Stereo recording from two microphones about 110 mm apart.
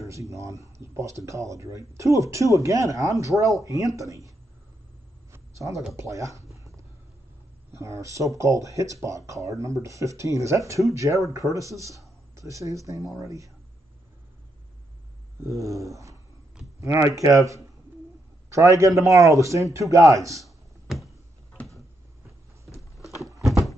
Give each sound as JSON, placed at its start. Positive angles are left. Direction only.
{"t": 0.0, "sound": "speech", "side_deg": -30}
{"t": 5.3, "sound": "a sound", "side_deg": -30}
{"t": 5.9, "sound": "speech", "side_deg": -30}
{"t": 7.7, "sound": "speech", "side_deg": -25}
{"t": 15.4, "sound": "speech", "side_deg": -30}
{"t": 22.8, "sound": "a sound", "side_deg": 0}